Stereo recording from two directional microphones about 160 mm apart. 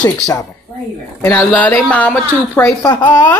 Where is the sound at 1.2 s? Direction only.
10° left (ahead or behind); by 3.2 s 25° left (ahead or behind).